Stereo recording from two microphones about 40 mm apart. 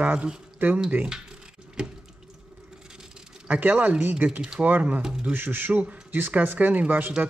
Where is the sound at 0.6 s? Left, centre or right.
Right.